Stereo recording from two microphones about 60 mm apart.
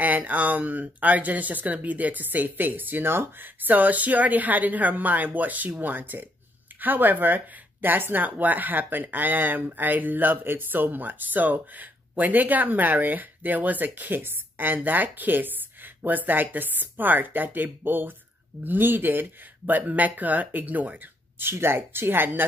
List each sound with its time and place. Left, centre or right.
0.0 s speech: right
21.5 s speech: right